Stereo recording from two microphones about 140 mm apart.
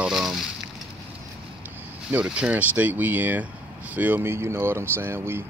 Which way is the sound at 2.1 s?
5° right (ahead or behind).